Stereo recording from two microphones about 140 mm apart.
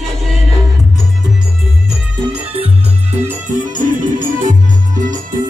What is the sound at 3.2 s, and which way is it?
Music, 65° right (ahead or behind).